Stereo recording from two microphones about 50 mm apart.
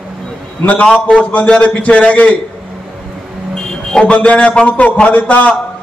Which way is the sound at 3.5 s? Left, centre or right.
Centre.